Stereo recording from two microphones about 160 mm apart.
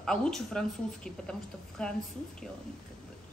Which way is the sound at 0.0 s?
5° left (ahead or behind).